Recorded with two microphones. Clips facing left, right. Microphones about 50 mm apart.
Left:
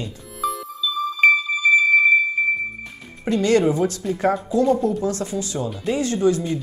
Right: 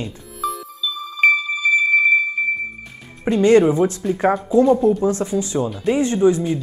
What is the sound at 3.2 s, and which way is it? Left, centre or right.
Speech, right.